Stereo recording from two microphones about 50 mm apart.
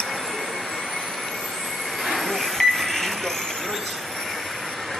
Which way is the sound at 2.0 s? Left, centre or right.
Centre.